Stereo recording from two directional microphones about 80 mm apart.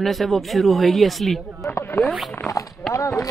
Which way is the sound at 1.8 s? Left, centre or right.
Left.